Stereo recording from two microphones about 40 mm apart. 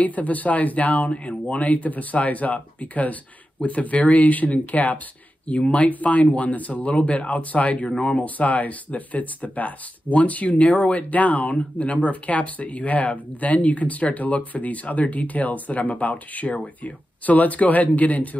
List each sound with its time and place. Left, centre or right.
0.0 s speech: left